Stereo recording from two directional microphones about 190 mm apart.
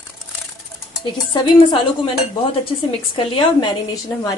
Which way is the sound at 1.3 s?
25° left (ahead or behind).